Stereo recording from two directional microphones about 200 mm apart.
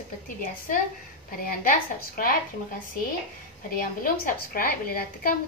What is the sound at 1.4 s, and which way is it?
Speech, 45° left (ahead or behind).